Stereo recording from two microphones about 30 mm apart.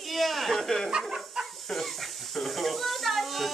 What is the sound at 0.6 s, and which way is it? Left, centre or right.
Speech, centre.